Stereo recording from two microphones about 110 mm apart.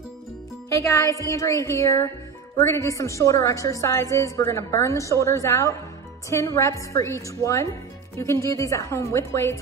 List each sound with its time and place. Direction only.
0.7 s a woman's voice: 30° left (ahead or behind)